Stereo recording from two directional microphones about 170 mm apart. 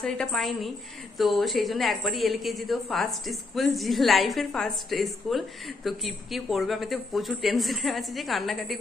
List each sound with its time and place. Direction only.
0.0 s a woman's voice: 5° left (ahead or behind)